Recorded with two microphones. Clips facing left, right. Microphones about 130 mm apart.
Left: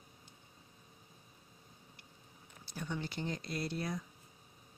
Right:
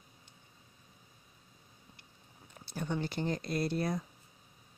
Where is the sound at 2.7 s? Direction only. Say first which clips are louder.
Right 5 dB; 45° right (ahead or behind).